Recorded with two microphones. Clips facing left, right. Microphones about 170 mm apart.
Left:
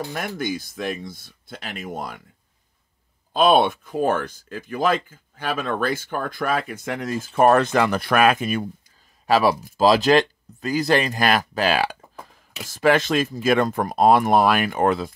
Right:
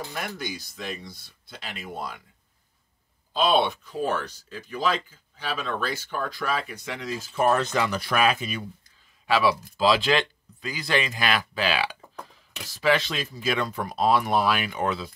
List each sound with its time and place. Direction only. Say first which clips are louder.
0.1 s speech: left 6 dB; 50° left (ahead or behind)
3.3 s speech: left 5 dB; 50° left (ahead or behind)
9.2 s speech: left 4 dB; 40° left (ahead or behind)